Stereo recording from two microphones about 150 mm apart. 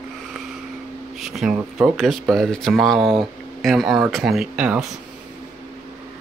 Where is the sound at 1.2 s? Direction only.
Centre (ahead or behind).